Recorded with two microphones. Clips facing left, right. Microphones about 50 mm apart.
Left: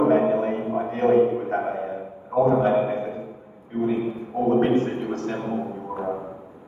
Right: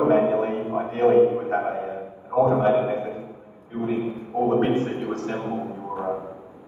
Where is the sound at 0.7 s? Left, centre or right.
Right.